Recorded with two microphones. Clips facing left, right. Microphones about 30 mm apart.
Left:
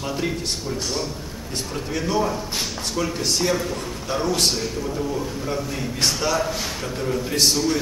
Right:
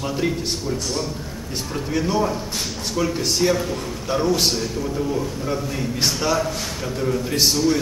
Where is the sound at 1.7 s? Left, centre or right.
Centre.